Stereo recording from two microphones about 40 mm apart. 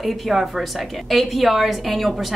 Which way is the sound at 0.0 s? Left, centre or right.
Centre.